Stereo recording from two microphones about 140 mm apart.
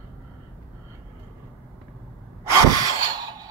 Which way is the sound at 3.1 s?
30° right (ahead or behind).